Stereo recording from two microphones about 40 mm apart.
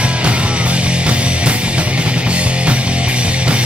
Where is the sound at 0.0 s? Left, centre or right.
Right.